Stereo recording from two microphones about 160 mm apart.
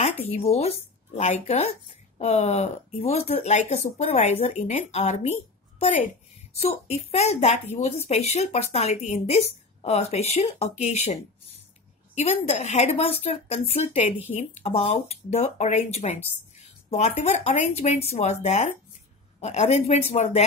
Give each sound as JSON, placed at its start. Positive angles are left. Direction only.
{"t": 0.0, "sound": "speech", "side_deg": 40}
{"t": 12.2, "sound": "speech", "side_deg": 45}